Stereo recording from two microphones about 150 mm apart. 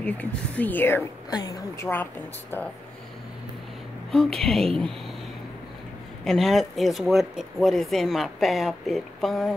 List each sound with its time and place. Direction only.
0.0 s speech: 10° left (ahead or behind)
1.3 s a woman's voice: 25° left (ahead or behind)
4.1 s speech: centre (ahead or behind)
6.2 s speech: centre (ahead or behind)